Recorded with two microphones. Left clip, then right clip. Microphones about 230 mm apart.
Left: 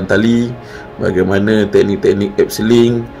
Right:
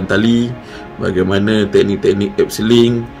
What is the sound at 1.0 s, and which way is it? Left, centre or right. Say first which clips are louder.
Speech: left 2 dB; centre.